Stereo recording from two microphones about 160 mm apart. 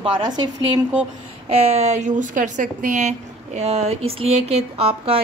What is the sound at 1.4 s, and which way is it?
A woman's voice, 40° right (ahead or behind).